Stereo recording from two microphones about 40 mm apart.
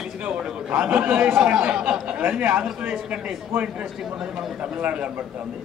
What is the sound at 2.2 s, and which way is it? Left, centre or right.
Speech, right.